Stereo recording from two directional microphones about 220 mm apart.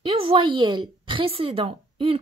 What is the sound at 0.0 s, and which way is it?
A woman's voice, 25° right (ahead or behind).